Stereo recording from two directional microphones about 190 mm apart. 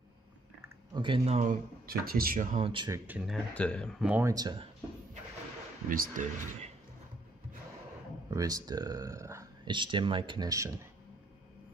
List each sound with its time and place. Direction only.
0.9 s speech: 25° right (ahead or behind)
2.7 s speech: 25° right (ahead or behind)
3.1 s speech: 5° right (ahead or behind)
3.5 s speech: 5° left (ahead or behind)
4.0 s speech: 10° right (ahead or behind)
4.3 s speech: 20° right (ahead or behind)
5.9 s speech: 45° right (ahead or behind)
8.3 s speech: 20° right (ahead or behind)